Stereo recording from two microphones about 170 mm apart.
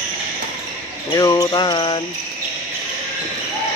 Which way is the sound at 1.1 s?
20° left (ahead or behind).